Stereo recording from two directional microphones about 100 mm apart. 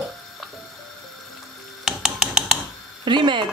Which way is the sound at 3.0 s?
50° right (ahead or behind).